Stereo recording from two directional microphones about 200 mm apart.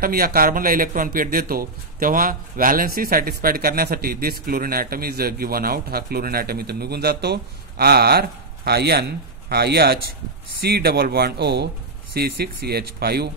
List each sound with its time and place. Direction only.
0.0 s speech: 50° right (ahead or behind)